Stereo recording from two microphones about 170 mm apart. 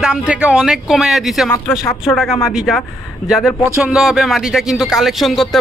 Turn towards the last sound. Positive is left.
turn(degrees=0)  # may be behind; listen again after turning